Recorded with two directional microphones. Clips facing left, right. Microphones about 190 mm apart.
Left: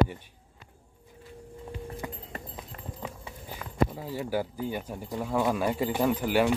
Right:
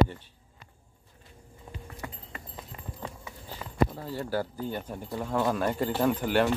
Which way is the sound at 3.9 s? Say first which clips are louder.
Left 1 dB; 10° left (ahead or behind).